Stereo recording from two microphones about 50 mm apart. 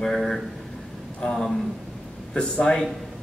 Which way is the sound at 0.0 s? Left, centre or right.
Centre.